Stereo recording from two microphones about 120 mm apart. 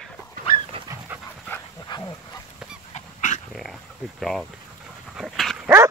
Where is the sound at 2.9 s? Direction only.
90° left.